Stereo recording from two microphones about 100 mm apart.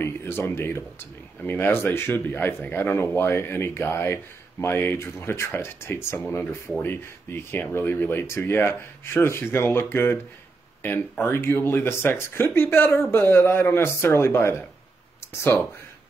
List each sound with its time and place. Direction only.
0.0 s speech: 25° left (ahead or behind)